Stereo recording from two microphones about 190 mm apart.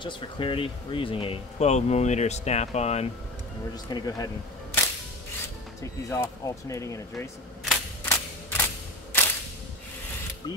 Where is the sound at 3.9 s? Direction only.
20° left (ahead or behind).